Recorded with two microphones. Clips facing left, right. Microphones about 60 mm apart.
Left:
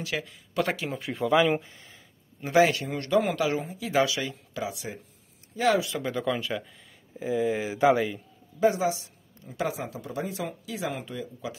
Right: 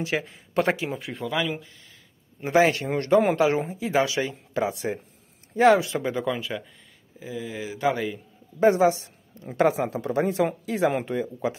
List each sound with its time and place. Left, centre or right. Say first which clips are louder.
0.0 s speech: right 5 dB; right
0.8 s a man's voice: right 1 dB; centre
1.2 s speech: left 6 dB; centre
2.4 s speech: right 2 dB; right
6.2 s a man's voice: even; centre
7.2 s speech: left 7 dB; left
8.5 s speech: right 5 dB; right